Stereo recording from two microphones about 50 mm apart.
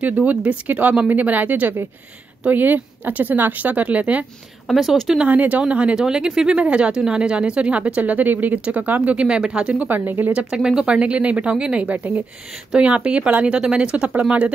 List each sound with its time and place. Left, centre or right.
0.0 s speech: right
4.6 s speech: centre
5.2 s speech: right
5.9 s speech: centre; by 9.1 s right
9.1 s speech: centre
9.8 s speech: right
10.3 s speech: centre; by 12.2 s right
12.7 s speech: right